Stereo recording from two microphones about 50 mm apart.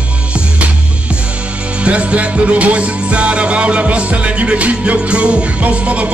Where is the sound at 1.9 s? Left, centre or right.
Right.